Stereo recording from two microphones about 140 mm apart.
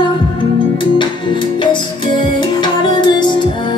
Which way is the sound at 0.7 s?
35° left (ahead or behind).